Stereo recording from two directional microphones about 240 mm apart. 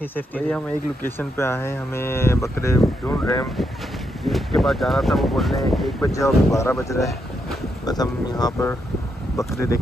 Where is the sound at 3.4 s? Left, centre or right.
Centre.